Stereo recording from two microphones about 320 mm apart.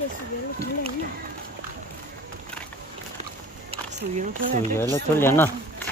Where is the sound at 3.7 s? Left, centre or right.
Right.